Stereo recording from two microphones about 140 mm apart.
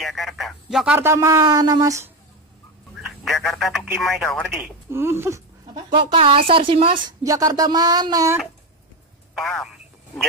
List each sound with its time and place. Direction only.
0.0 s speech: centre (ahead or behind)
0.9 s speech: 20° right (ahead or behind)
3.1 s speech: centre (ahead or behind)
4.9 s a sound: 20° right (ahead or behind)
5.9 s speech: 40° right (ahead or behind)
7.2 s speech: 25° right (ahead or behind)
9.4 s speech: centre (ahead or behind)